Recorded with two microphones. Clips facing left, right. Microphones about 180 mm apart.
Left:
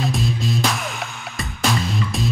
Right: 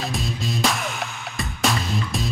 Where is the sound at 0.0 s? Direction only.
Centre (ahead or behind).